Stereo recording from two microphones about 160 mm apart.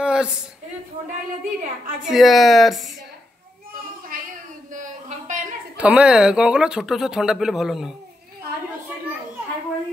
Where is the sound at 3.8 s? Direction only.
65° right (ahead or behind).